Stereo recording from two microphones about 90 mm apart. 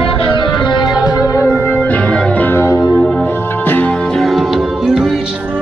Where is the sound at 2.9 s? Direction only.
5° left (ahead or behind).